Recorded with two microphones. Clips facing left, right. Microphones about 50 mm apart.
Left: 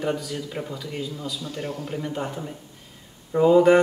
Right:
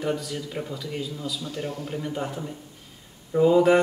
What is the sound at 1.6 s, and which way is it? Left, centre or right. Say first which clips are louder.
Speech: left 3 dB; centre.